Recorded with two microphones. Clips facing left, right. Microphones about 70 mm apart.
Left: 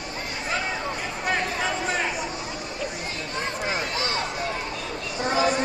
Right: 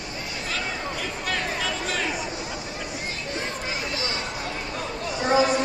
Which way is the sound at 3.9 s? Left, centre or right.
Left.